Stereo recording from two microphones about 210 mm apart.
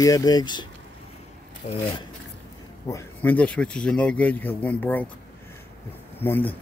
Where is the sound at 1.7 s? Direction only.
25° left (ahead or behind).